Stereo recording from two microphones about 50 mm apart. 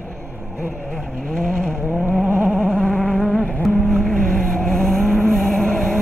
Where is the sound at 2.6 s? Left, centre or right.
Left.